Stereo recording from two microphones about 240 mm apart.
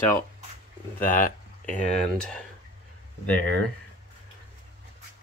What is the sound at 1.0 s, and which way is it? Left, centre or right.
Speech, left.